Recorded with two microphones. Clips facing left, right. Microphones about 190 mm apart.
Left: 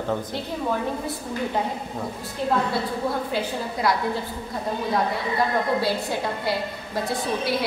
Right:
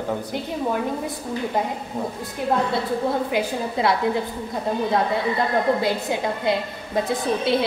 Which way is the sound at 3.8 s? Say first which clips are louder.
Right 2 dB; 25° right (ahead or behind).